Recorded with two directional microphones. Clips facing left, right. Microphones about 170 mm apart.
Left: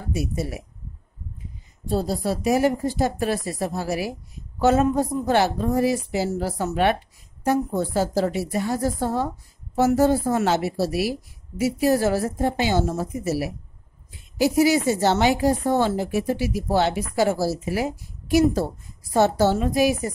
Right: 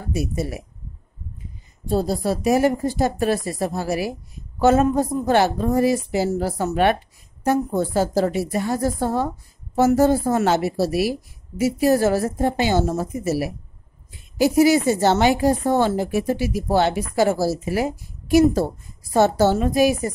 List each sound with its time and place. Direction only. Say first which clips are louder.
0.1 s a woman's voice: right 2 dB; 45° right (ahead or behind)
1.9 s a woman's voice: right 3 dB; 45° right (ahead or behind)